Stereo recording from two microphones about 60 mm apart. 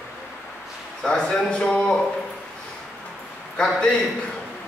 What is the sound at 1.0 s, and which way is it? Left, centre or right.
Speech, centre.